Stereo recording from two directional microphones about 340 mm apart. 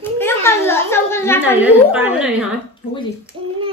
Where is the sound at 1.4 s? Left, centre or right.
Centre.